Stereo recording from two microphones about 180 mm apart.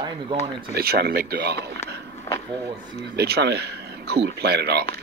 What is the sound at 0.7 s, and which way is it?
Speech, 60° right (ahead or behind).